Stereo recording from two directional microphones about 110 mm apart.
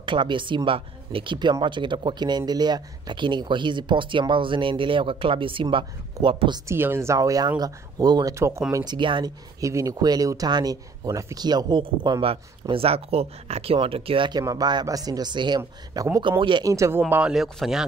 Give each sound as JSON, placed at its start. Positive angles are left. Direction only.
{"t": 0.0, "sound": "speech", "side_deg": -50}
{"t": 6.7, "sound": "speech", "side_deg": -20}
{"t": 8.4, "sound": "speech", "side_deg": -25}
{"t": 8.8, "sound": "speech", "side_deg": -45}
{"t": 9.6, "sound": "speech", "side_deg": -30}
{"t": 11.8, "sound": "speech", "side_deg": -50}
{"t": 14.4, "sound": "speech", "side_deg": -35}
{"t": 16.3, "sound": "speech", "side_deg": -50}
{"t": 16.6, "sound": "speech", "side_deg": -25}
{"t": 17.3, "sound": "speech", "side_deg": -5}